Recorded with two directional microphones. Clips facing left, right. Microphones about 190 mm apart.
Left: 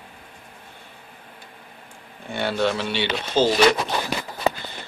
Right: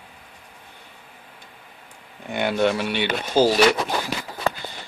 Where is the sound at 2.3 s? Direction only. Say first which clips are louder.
Right 2 dB; 15° right (ahead or behind).